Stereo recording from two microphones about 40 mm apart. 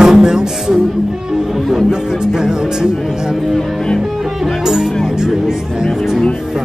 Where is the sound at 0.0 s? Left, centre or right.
Centre.